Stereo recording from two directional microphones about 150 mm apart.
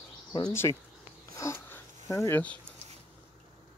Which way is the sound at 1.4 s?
20° left (ahead or behind).